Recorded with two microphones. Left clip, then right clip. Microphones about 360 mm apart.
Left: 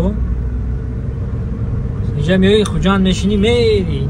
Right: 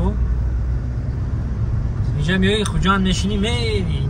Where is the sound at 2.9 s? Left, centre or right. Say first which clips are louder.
Left 3 dB; centre.